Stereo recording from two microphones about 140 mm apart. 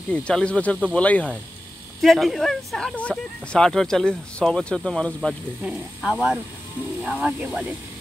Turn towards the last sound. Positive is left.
turn(degrees=-10)  # may be behind; listen again after turning